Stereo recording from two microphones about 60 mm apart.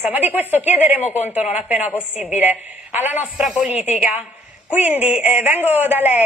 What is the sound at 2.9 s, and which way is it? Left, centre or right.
Speech, right.